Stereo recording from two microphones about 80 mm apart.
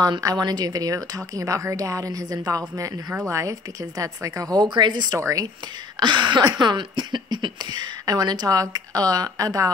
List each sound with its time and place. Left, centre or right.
0.2 s a woman's voice: right
4.6 s speech: right
5.1 s a woman's voice: right
5.9 s speech: right